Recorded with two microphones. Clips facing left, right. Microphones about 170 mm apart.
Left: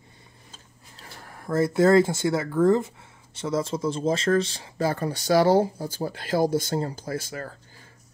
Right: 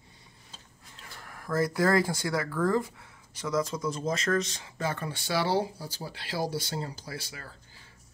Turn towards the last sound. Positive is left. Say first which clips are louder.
# left 10 dB
turn(degrees=45)  # may be behind; listen again after turning